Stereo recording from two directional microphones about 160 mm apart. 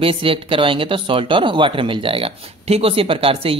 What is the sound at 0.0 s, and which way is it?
Speech, 35° right (ahead or behind).